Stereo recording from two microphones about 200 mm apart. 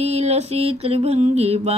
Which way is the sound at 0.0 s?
35° right (ahead or behind).